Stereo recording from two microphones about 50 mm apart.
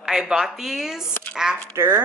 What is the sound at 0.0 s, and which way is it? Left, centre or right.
Speech, centre.